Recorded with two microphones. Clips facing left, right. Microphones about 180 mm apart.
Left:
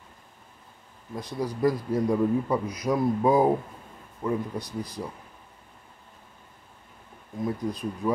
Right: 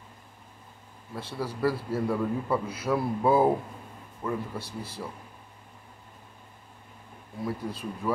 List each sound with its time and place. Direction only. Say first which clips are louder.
1.1 s a man's voice: left 3 dB; 15° left (ahead or behind)
7.4 s a man's voice: left 3 dB; 15° left (ahead or behind)